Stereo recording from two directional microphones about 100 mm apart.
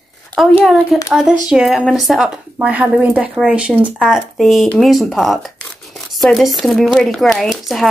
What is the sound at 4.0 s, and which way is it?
Speech, centre (ahead or behind).